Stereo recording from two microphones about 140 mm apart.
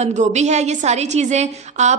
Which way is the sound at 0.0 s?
55° right (ahead or behind).